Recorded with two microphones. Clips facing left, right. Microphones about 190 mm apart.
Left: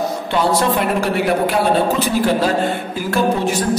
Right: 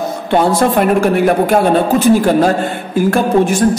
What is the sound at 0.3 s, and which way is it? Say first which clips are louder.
A woman's voice: right 6 dB; 50° right (ahead or behind).